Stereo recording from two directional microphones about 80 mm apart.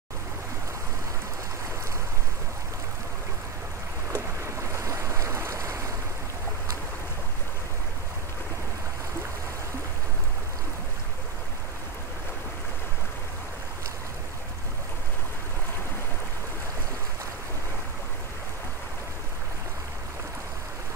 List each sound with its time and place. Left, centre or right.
4.1 s boat: right